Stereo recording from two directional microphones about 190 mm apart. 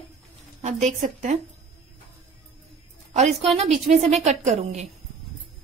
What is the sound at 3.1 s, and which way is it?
A woman's voice, 35° right (ahead or behind).